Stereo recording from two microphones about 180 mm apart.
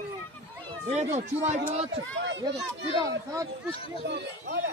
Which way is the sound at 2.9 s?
20° right (ahead or behind).